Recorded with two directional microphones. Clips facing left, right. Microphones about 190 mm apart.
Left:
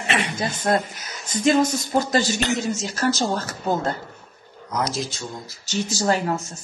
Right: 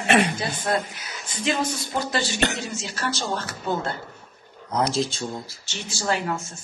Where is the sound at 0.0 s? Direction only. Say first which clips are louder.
Right 5 dB; 45° right (ahead or behind).